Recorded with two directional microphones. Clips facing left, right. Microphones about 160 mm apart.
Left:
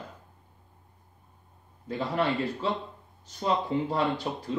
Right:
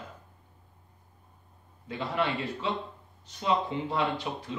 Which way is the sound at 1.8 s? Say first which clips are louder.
Left 3 dB; 40° left (ahead or behind).